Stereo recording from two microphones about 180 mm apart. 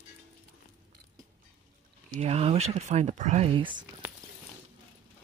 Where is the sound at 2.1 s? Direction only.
35° right (ahead or behind).